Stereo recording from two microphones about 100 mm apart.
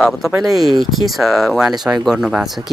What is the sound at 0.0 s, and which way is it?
Speech, 5° right (ahead or behind).